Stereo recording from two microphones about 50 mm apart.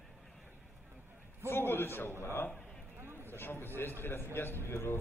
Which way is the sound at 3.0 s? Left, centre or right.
Right.